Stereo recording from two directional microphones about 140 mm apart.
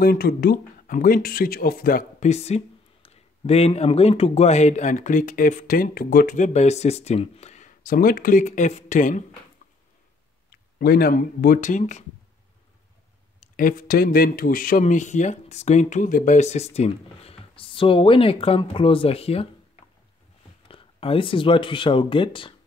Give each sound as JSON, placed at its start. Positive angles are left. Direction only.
{"t": 0.0, "sound": "speech", "side_deg": 90}
{"t": 2.2, "sound": "speech", "side_deg": 50}
{"t": 10.8, "sound": "speech", "side_deg": 90}
{"t": 13.6, "sound": "speech", "side_deg": 80}